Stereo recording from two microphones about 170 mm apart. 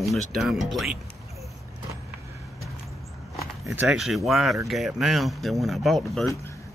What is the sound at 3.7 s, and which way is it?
Speech, centre (ahead or behind).